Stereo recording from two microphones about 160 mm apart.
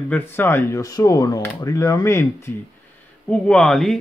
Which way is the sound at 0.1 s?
15° left (ahead or behind).